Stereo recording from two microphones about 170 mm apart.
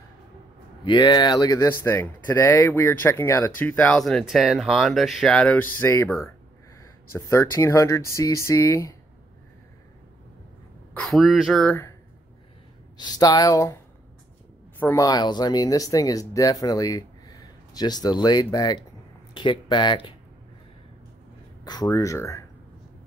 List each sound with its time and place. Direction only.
0.8 s speech: 25° left (ahead or behind)
11.0 s speech: centre (ahead or behind)
11.6 s speech: 10° left (ahead or behind)
12.9 s speech: 25° left (ahead or behind)
14.8 s speech: 15° left (ahead or behind)
21.6 s speech: 20° left (ahead or behind)